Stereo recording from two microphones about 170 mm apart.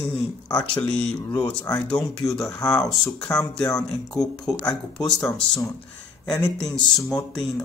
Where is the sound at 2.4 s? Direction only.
20° left (ahead or behind).